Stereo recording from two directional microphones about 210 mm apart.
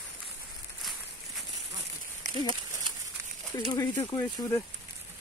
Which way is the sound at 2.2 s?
35° right (ahead or behind).